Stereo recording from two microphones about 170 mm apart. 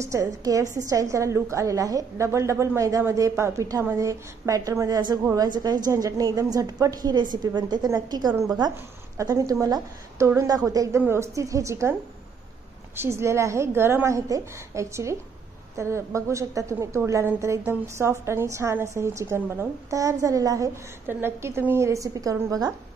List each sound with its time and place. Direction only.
0.0 s a woman's voice: 20° right (ahead or behind)
12.9 s a woman's voice: 15° right (ahead or behind)